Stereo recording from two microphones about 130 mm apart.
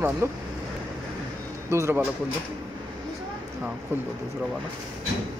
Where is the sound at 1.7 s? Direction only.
20° right (ahead or behind).